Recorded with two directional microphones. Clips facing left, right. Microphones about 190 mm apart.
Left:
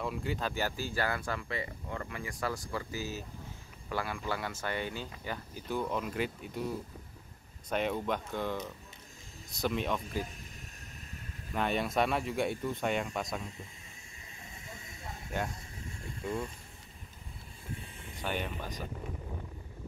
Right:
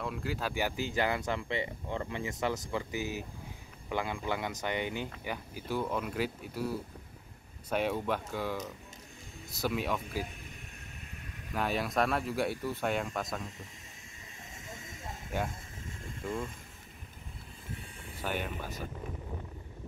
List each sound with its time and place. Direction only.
0.0 s speech: centre (ahead or behind)
7.7 s speech: 5° right (ahead or behind)
11.5 s speech: centre (ahead or behind)
18.2 s speech: 5° right (ahead or behind)